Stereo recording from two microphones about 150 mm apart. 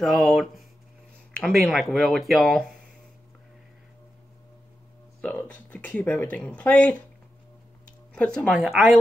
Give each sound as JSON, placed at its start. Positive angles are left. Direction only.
{"t": 0.0, "sound": "speech", "side_deg": 0}
{"t": 5.2, "sound": "speech", "side_deg": 5}
{"t": 8.1, "sound": "speech", "side_deg": 5}